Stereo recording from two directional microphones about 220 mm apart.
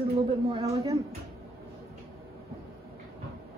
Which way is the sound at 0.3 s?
25° right (ahead or behind).